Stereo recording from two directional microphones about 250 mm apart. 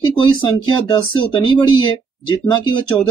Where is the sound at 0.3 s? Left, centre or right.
Centre.